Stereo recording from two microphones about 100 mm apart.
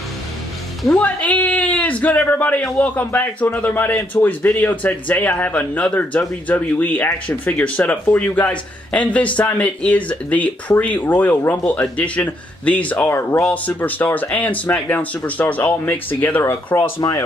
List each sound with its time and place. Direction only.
0.9 s a man's voice: 15° left (ahead or behind); by 17.2 s 30° left (ahead or behind)